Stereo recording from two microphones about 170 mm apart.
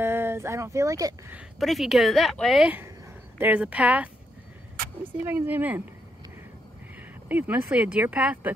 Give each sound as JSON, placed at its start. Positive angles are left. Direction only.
{"t": 0.0, "sound": "a sound", "side_deg": -15}
{"t": 1.3, "sound": "speech", "side_deg": 0}
{"t": 5.2, "sound": "speech", "side_deg": -10}
{"t": 7.0, "sound": "speech", "side_deg": -10}